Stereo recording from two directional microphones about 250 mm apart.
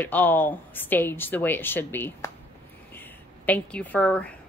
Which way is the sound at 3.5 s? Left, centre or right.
Centre.